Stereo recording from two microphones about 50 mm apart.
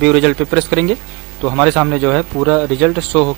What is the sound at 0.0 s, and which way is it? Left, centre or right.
Speech, centre.